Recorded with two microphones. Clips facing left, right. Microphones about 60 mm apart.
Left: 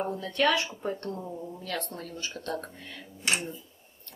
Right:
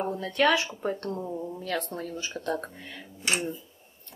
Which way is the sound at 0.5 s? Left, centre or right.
Centre.